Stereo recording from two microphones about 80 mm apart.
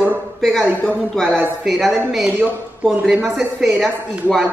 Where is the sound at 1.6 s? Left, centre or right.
Centre.